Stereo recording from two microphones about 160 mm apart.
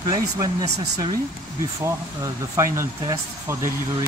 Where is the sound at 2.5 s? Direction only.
20° right (ahead or behind).